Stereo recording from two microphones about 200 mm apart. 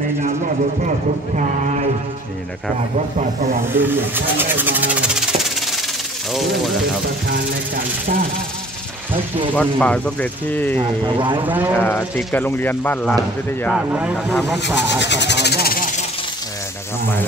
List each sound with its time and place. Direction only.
3.7 s a sound: 10° right (ahead or behind)
7.2 s speech: 50° right (ahead or behind)
9.6 s speech: 5° left (ahead or behind)
11.1 s speech: 25° right (ahead or behind)
11.4 s speech: 10° right (ahead or behind)
11.7 s speech: 10° left (ahead or behind)
13.7 s speech: 5° right (ahead or behind)
15.0 s a sound: 60° left (ahead or behind)